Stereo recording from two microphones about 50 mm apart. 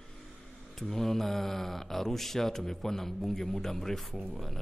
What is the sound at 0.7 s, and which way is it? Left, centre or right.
A man's voice, centre.